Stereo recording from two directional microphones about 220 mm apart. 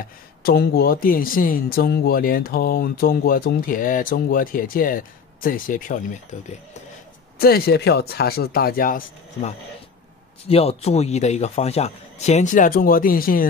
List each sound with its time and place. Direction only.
0.0 s speech: 45° left (ahead or behind)
7.3 s speech: 45° left (ahead or behind)
10.5 s speech: 25° left (ahead or behind)